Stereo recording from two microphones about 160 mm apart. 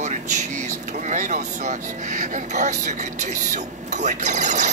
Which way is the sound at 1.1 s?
50° right (ahead or behind).